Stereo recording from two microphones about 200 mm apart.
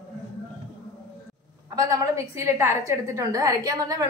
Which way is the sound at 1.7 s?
15° right (ahead or behind).